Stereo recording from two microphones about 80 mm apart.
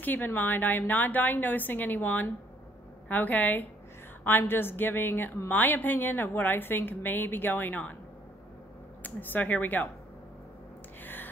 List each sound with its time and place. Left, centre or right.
0.0 s a woman's voice: left
9.0 s a woman's voice: left